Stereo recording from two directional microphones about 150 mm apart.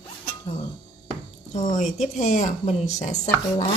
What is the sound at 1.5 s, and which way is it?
Speech, 50° left (ahead or behind).